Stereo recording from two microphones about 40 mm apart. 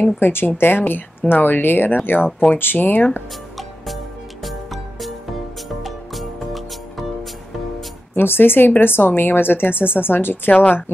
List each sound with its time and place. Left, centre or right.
0.2 s speech: left
3.5 s music: centre
8.1 s speech: left